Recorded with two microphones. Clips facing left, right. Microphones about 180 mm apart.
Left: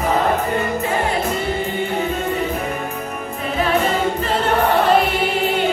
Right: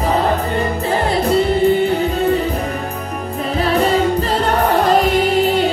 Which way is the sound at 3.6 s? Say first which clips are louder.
Right 3 dB; 35° right (ahead or behind).